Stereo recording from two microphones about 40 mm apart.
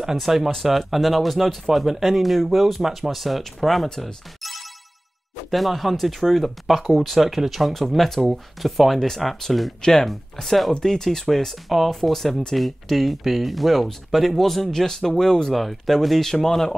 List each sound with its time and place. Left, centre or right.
0.2 s speech: centre
9.8 s speech: centre
10.0 s speech: centre
15.5 s speech: centre